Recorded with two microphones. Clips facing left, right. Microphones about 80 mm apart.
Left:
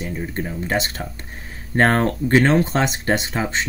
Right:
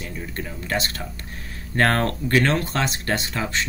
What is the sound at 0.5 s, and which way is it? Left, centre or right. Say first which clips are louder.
Speech: left 2 dB; left.